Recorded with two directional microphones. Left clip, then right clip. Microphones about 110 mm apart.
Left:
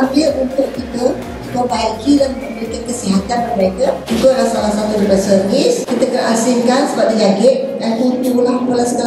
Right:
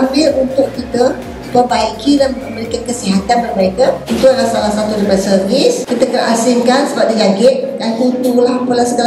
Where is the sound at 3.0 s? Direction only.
15° right (ahead or behind).